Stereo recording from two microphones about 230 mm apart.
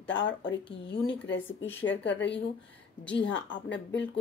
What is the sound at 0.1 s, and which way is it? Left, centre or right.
Speech, left.